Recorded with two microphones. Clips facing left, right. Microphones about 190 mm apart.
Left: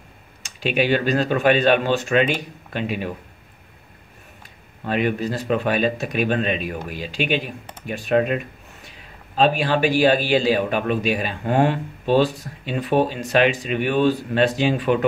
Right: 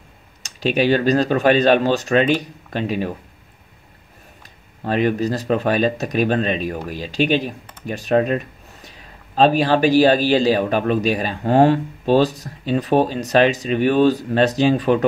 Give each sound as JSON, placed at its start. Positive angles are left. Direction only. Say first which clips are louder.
{"t": 0.4, "sound": "a man's voice", "louder": "right 3 dB", "side_deg": -40}
{"t": 4.8, "sound": "a man's voice", "louder": "right 3 dB", "side_deg": -40}